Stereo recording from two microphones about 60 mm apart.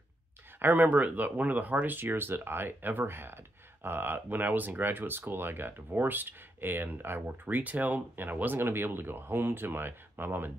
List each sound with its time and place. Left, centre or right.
0.6 s speech: right